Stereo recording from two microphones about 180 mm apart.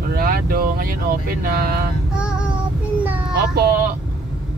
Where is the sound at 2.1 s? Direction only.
5° right (ahead or behind).